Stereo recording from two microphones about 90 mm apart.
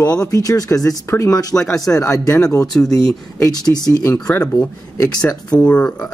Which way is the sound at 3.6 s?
45° left (ahead or behind).